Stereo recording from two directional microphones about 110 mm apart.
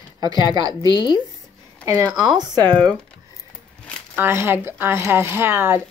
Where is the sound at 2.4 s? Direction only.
40° right (ahead or behind).